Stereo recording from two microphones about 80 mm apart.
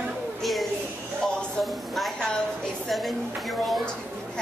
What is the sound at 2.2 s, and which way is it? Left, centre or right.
Speech, centre.